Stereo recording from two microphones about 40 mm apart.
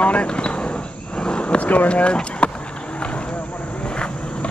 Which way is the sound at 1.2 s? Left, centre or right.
Left.